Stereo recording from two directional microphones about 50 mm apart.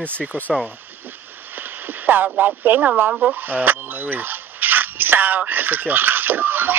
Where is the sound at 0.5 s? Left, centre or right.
Right.